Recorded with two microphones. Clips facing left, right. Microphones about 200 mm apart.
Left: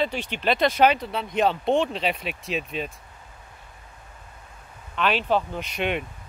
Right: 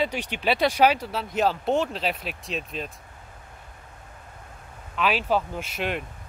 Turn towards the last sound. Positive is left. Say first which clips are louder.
# left 2 dB
turn(degrees=0)  # may be behind; listen again after turning